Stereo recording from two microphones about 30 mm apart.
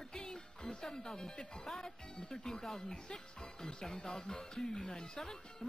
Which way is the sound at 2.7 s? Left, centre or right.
Centre.